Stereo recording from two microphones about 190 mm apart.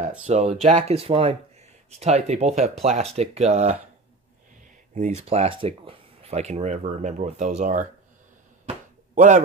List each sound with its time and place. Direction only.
0.3 s speech: 35° right (ahead or behind)
4.9 s speech: 35° right (ahead or behind)
9.1 s a man's voice: 40° right (ahead or behind)